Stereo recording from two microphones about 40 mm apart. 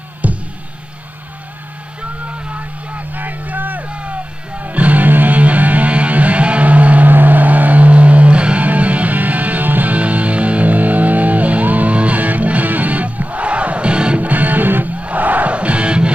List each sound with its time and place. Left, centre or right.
0.2 s music: right
2.0 s vehicle: right
3.8 s music: right
9.9 s music: right
14.2 s music: right
15.0 s music: right